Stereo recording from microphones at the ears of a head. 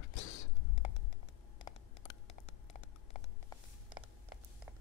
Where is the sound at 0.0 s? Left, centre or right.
Left.